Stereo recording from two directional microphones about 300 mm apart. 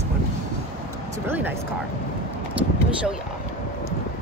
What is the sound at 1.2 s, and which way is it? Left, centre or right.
Speech, centre.